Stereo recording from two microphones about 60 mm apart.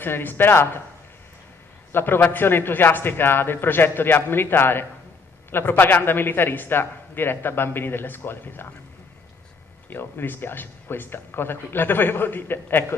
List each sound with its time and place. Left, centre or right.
0.0 s a man's voice: left
1.9 s a man's voice: left
9.8 s a man's voice: left